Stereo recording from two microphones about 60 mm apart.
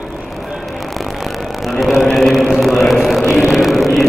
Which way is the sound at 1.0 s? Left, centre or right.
Centre.